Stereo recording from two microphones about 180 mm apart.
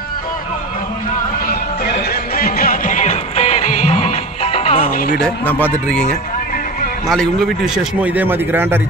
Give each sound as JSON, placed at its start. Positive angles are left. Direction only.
{"t": 1.5, "sound": "music", "side_deg": 60}
{"t": 4.8, "sound": "music", "side_deg": 55}
{"t": 5.2, "sound": "a man's voice", "side_deg": 10}